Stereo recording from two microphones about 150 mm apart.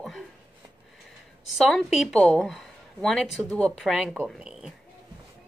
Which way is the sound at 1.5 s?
Centre (ahead or behind).